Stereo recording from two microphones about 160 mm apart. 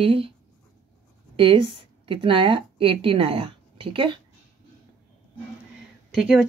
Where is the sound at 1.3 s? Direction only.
35° right (ahead or behind).